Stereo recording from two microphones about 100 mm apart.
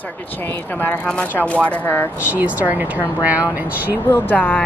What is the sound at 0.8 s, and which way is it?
Speech, 15° left (ahead or behind).